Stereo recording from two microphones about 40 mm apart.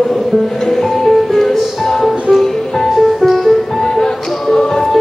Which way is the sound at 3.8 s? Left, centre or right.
Centre.